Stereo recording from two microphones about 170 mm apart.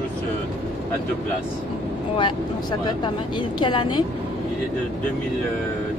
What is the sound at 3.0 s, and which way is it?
A woman's voice, 25° left (ahead or behind).